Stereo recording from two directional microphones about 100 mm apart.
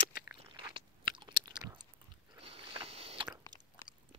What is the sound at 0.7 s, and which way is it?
Chewing, 55° right (ahead or behind).